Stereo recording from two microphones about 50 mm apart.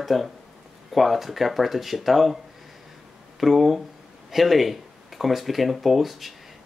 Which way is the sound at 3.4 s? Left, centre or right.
Centre.